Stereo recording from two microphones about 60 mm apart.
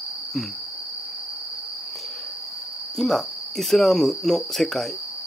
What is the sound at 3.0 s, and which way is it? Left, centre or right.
Cricket, centre.